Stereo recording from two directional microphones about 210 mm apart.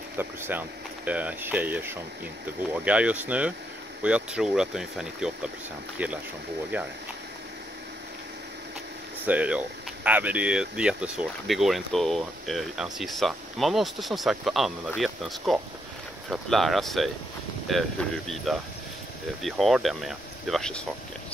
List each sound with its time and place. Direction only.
0.2 s speech: 10° right (ahead or behind)
6.7 s speech: 10° right (ahead or behind)
9.2 s speech: 5° right (ahead or behind)